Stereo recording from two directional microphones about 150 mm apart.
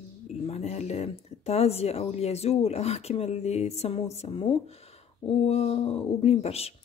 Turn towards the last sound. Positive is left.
turn(degrees=45)  # may be behind; listen again after turning